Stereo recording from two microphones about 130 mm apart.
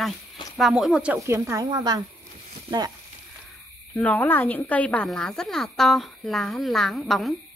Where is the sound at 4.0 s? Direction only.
10° left (ahead or behind).